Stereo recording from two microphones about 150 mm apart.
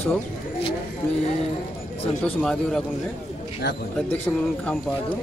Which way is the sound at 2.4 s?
5° left (ahead or behind).